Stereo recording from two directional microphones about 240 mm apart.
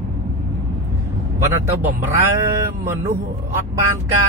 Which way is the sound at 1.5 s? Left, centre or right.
Centre.